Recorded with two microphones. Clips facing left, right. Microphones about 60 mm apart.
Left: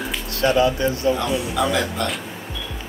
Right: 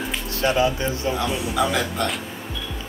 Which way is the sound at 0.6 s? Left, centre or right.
Right.